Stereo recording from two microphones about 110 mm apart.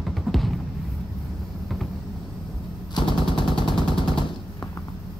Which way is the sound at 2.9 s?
50° left (ahead or behind).